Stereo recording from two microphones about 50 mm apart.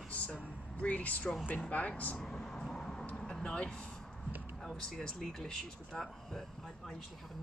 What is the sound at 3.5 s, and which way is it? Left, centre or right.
Speech, left.